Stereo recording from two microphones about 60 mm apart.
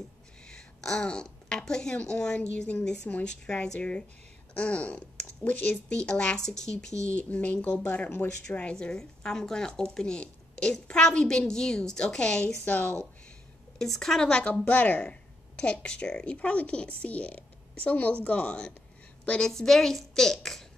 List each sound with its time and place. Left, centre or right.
0.5 s a sound: centre
2.0 s a woman's voice: centre
7.1 s a woman's voice: left
13.7 s a woman's voice: centre
14.6 s a woman's voice: left
19.5 s a woman's voice: centre